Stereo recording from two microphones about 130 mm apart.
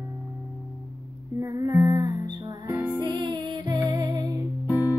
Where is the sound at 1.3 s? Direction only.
25° right (ahead or behind).